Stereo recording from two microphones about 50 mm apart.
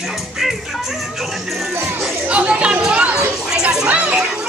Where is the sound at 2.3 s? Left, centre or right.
Right.